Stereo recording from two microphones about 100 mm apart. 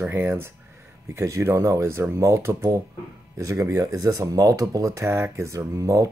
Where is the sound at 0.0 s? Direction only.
20° right (ahead or behind).